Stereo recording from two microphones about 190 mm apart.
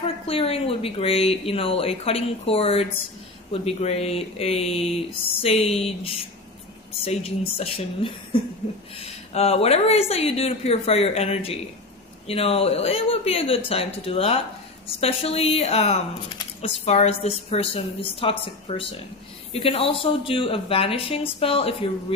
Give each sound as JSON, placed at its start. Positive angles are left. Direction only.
{"t": 0.3, "sound": "a woman's voice", "side_deg": 30}